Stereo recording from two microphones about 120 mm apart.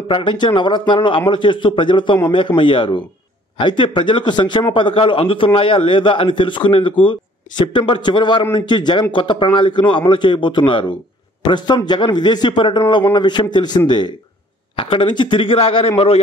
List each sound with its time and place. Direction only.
0.1 s a man's voice: 45° left (ahead or behind)